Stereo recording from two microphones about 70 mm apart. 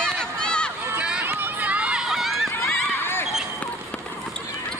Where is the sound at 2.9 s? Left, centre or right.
Left.